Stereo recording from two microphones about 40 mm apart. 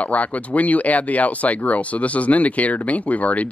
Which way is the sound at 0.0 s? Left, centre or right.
Left.